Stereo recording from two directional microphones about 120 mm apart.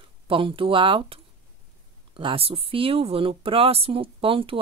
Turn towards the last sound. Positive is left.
turn(degrees=-50)  # may be behind; listen again after turning